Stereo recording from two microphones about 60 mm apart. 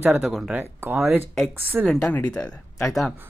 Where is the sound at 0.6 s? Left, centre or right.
Right.